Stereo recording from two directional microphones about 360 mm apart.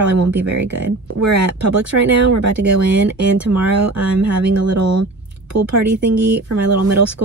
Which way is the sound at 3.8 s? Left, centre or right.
Right.